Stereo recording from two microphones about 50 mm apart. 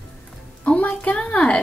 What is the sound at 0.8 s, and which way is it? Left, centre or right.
Speech, left.